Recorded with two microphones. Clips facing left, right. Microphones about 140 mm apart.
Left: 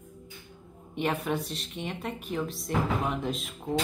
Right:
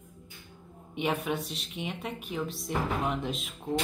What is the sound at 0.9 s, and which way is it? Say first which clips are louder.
Speech: left 1 dB; centre (ahead or behind).